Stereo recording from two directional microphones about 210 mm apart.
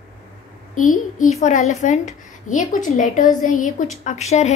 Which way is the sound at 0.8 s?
40° left (ahead or behind).